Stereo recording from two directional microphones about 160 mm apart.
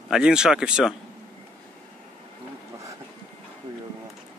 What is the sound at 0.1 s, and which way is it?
Speech, 5° right (ahead or behind).